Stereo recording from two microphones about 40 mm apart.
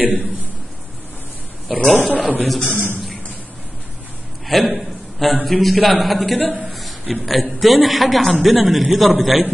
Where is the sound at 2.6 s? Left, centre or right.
Left.